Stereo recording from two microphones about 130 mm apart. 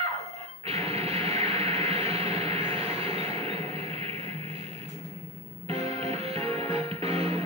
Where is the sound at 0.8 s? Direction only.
50° right (ahead or behind).